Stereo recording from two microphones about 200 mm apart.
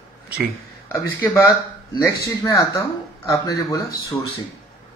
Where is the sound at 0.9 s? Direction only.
15° left (ahead or behind).